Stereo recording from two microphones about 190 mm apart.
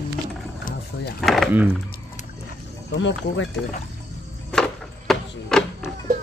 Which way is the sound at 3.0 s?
80° left.